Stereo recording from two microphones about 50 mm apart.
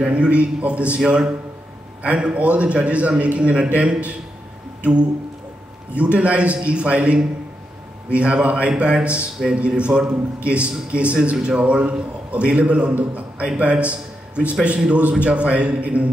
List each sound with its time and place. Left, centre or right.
0.0 s a man's voice: right
6.1 s a man's voice: right